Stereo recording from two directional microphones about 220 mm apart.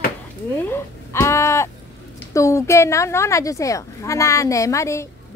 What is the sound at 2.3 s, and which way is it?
A woman's voice, 15° left (ahead or behind).